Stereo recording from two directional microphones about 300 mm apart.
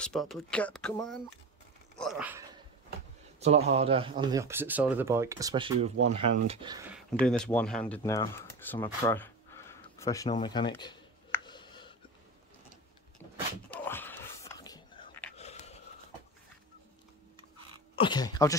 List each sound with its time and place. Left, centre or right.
0.0 s speech: centre
3.3 s a man's voice: right
6.9 s speech: centre
13.7 s a sound: centre
15.3 s a sound: left
17.9 s speech: centre